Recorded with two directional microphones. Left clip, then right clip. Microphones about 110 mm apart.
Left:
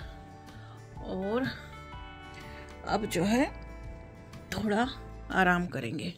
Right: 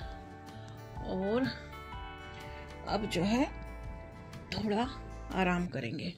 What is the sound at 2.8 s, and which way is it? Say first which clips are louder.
Speech: left 3 dB; 15° left (ahead or behind).